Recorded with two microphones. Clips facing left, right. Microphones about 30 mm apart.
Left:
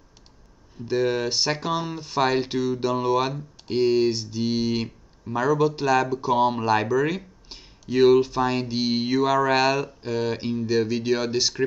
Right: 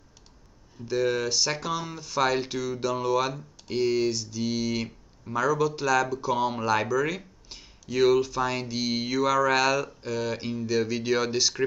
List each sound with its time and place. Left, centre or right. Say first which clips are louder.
0.8 s speech: left 2 dB; left